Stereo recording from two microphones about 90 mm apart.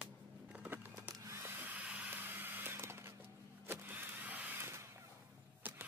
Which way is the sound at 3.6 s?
20° right (ahead or behind).